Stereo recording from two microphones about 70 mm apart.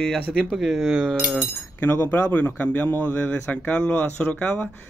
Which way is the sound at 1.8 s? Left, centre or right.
Left.